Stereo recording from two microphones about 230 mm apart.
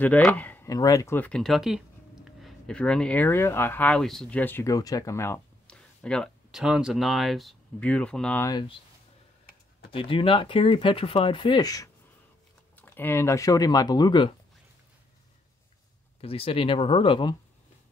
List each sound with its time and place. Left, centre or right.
0.0 s speech: centre
9.8 s speech: left
16.2 s speech: left